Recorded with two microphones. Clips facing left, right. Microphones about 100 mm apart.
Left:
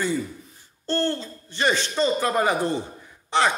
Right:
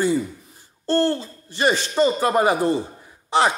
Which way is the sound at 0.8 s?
10° right (ahead or behind).